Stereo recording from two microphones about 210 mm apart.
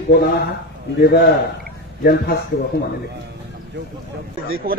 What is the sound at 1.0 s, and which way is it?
A man's voice, 50° left (ahead or behind).